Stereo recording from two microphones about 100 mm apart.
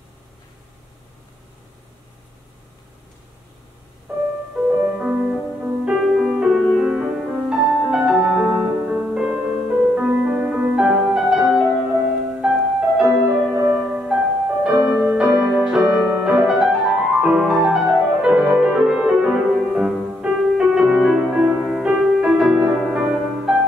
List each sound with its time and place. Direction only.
4.1 s music: 20° right (ahead or behind)
5.9 s music: 5° right (ahead or behind)